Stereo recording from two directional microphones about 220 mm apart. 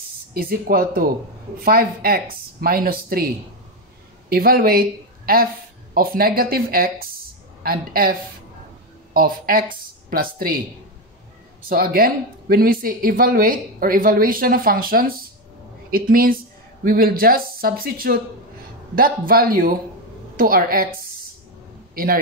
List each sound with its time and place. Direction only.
0.3 s speech: 40° right (ahead or behind)
4.3 s speech: 45° right (ahead or behind)
11.7 s speech: 40° right (ahead or behind)
21.9 s a man's voice: 40° right (ahead or behind)